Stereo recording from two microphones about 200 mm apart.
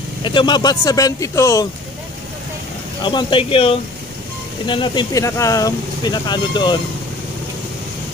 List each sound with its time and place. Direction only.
0.2 s speech: 20° left (ahead or behind)
3.0 s speech: 25° left (ahead or behind)